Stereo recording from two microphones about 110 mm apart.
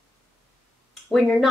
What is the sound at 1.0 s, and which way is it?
Speech, 5° left (ahead or behind).